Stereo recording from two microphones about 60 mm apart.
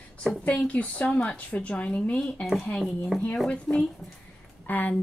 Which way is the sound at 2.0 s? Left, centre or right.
Centre.